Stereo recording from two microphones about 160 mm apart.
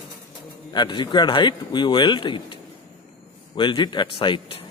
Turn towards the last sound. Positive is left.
turn(degrees=30)  # may be behind; listen again after turning